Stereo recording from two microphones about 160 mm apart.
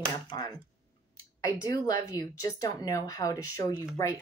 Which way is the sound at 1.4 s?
25° left (ahead or behind).